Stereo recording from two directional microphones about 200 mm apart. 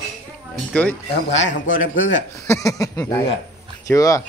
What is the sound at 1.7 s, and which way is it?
Speech, 40° left (ahead or behind).